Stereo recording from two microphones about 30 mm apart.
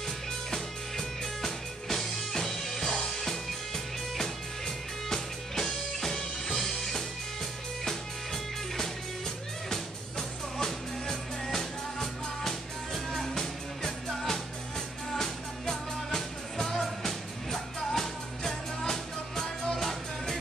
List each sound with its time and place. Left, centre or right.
0.5 s music: centre